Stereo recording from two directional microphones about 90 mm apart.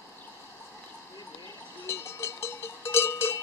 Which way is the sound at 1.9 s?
30° left (ahead or behind).